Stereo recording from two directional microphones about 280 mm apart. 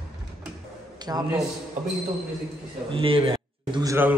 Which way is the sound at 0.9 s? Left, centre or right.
Centre.